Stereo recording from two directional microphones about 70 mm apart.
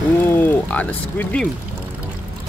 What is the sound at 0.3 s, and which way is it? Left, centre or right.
Speech, left.